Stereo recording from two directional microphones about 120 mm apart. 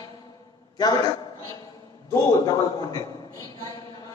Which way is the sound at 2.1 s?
30° left (ahead or behind).